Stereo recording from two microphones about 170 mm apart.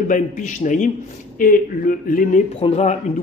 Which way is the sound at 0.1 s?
50° left (ahead or behind).